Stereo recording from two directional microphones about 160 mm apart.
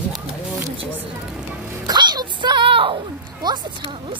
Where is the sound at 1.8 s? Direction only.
25° right (ahead or behind).